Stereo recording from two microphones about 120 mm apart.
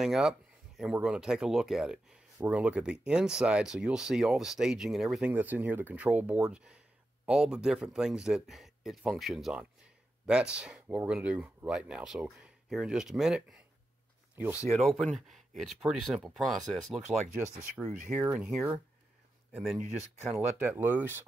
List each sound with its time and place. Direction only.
0.0 s a sound: 5° right (ahead or behind)
1.0 s speech: 5° right (ahead or behind)
5.3 s speech: 15° right (ahead or behind)
14.3 s speech: 15° right (ahead or behind)
14.7 s speech: centre (ahead or behind)
20.7 s speech: 15° right (ahead or behind)